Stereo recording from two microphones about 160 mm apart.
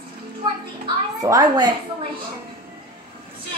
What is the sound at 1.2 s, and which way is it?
Speech, 25° right (ahead or behind).